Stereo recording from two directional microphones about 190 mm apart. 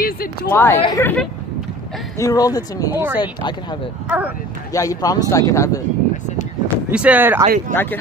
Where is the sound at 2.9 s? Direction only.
10° right (ahead or behind).